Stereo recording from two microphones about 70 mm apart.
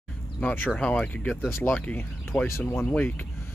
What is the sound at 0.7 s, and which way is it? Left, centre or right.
Speech, centre.